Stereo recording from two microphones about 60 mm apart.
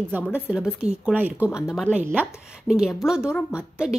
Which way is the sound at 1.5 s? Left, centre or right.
Centre.